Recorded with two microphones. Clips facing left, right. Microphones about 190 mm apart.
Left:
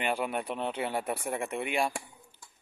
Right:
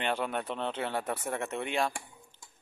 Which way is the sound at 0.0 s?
10° left (ahead or behind).